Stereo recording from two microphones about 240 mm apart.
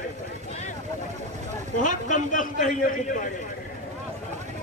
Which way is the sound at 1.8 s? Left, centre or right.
Left.